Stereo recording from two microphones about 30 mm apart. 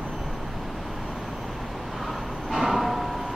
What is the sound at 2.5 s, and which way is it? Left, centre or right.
Music, centre.